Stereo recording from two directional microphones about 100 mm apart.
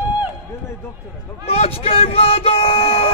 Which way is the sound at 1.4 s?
90° left.